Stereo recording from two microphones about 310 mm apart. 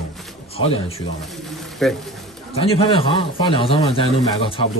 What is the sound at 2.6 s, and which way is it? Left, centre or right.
A man's voice, centre.